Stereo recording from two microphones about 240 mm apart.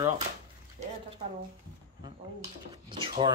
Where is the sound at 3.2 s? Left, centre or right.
Right.